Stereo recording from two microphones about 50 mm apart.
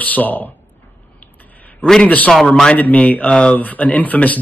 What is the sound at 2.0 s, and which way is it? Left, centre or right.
Speech, left.